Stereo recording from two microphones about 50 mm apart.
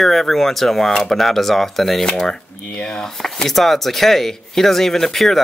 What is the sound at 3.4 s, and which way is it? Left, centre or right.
Speech, centre.